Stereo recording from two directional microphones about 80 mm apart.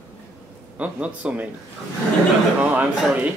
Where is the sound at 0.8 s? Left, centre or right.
Centre.